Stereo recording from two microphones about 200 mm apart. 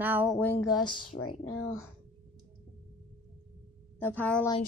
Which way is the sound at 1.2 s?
90° left.